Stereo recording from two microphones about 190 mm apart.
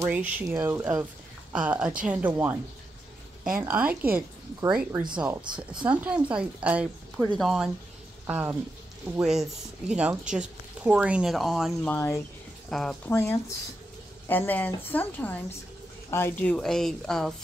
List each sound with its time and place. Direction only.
0.0 s speech: 10° right (ahead or behind)
3.5 s speech: 10° right (ahead or behind)
11.9 s a woman's voice: 15° left (ahead or behind)
12.6 s speech: 5° left (ahead or behind)
13.1 s a woman's voice: 15° left (ahead or behind)